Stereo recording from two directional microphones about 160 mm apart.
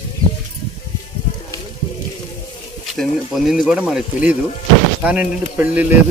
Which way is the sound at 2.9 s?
Centre (ahead or behind).